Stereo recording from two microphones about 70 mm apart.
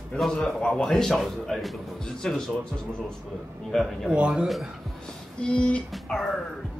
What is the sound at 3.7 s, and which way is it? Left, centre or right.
Speech, centre.